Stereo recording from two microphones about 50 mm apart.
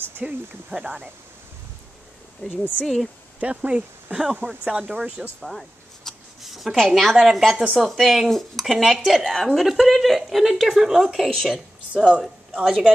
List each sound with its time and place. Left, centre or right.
0.2 s speech: right
2.8 s speech: centre
3.3 s speech: right
5.4 s a sound: centre
6.9 s speech: centre
11.3 s speech: centre
12.0 s a woman's voice: centre